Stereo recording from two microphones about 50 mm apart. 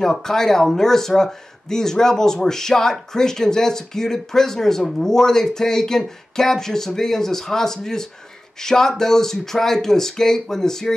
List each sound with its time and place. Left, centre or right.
0.0 s speech: centre